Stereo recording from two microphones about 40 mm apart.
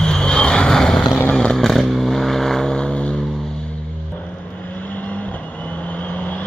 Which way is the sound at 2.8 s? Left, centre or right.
Left.